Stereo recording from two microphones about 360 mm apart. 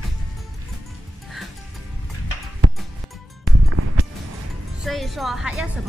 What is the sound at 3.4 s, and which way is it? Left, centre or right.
Music, right.